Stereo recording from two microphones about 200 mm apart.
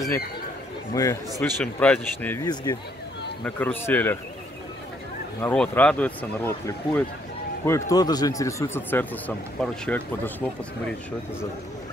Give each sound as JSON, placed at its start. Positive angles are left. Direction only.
{"t": 0.9, "sound": "speech", "side_deg": 15}
{"t": 1.4, "sound": "speech", "side_deg": 5}
{"t": 2.4, "sound": "speech", "side_deg": 20}
{"t": 3.4, "sound": "speech", "side_deg": 5}
{"t": 5.4, "sound": "speech", "side_deg": 5}